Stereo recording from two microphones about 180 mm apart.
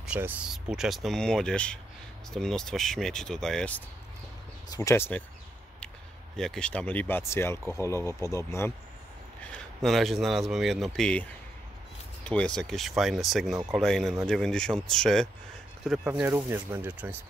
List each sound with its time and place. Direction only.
0.0 s speech: 10° right (ahead or behind)
4.6 s speech: 20° left (ahead or behind)
6.3 s speech: 5° left (ahead or behind)
9.5 s speech: 5° left (ahead or behind)
12.3 s speech: 5° left (ahead or behind)
16.0 s speech: 10° right (ahead or behind)